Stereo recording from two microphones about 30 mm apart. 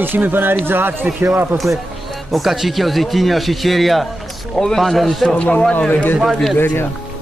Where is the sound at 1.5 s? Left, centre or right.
Centre.